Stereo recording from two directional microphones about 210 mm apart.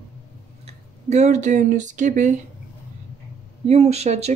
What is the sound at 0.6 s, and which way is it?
Speech, 30° right (ahead or behind).